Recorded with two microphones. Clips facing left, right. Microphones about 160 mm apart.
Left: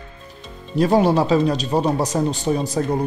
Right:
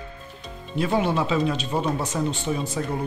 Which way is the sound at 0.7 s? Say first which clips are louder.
Left 7 dB; 40° left (ahead or behind).